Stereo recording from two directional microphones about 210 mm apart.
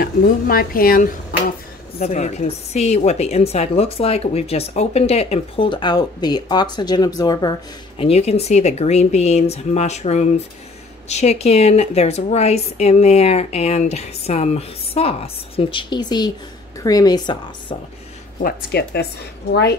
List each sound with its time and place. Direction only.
0.0 s speech: 45° left (ahead or behind); by 7.5 s 20° left (ahead or behind)
8.0 s a woman's voice: 30° left (ahead or behind)
18.4 s speech: 50° left (ahead or behind)